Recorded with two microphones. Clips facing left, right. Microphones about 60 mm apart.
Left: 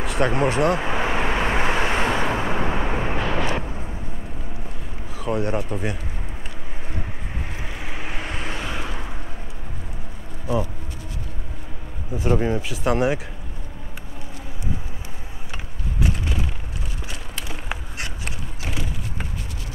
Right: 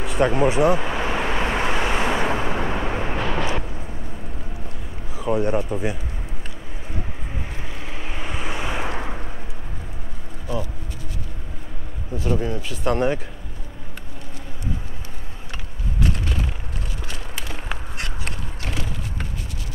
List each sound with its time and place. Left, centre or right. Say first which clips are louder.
0.0 s speech: right 2 dB; centre
0.7 s vehicle: left 1 dB; centre
1.9 s vehicle: even; centre
2.1 s vehicle: even; centre
5.1 s speech: right 2 dB; centre
7.8 s vehicle: left 1 dB; centre
8.5 s vehicle: right 3 dB; centre
12.2 s speech: left 3 dB; left
12.5 s speech: left 1 dB; centre
16.0 s a sound: even; centre
17.5 s a sound: left 1 dB; centre